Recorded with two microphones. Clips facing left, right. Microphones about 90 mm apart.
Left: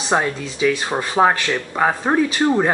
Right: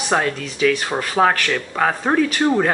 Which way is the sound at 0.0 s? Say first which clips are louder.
Even; 20° left (ahead or behind).